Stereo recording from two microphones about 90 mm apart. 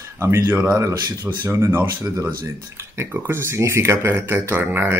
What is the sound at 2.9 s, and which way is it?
Speech, 25° right (ahead or behind).